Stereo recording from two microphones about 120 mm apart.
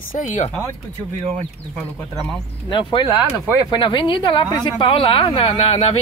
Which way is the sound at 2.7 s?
40° left (ahead or behind).